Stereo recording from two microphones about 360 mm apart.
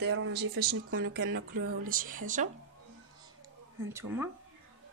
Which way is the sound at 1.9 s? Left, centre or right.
Right.